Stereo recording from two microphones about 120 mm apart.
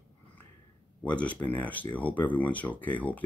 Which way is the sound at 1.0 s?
10° left (ahead or behind).